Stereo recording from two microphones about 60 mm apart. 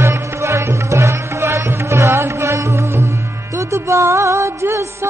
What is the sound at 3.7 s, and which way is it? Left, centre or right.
Music, right.